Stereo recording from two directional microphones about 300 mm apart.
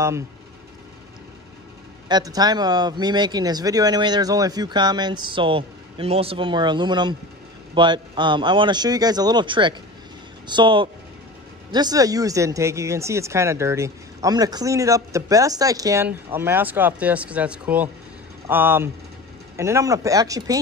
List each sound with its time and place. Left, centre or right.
2.0 s speech: centre